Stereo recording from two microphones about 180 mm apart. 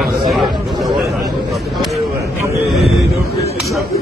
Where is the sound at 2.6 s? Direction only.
Centre (ahead or behind).